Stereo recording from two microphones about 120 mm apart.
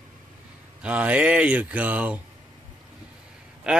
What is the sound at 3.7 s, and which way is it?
Speech, 5° right (ahead or behind).